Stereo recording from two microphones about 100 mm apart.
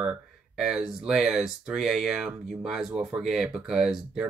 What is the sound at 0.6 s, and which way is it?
Speech, 5° right (ahead or behind).